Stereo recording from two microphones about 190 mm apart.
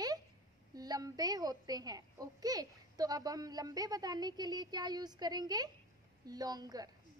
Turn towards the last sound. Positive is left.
turn(degrees=-20)  # may be behind; listen again after turning